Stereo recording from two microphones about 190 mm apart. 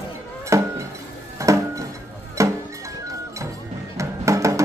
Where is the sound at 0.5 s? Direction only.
15° right (ahead or behind).